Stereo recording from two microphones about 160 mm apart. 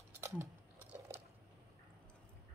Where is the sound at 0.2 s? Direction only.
15° right (ahead or behind).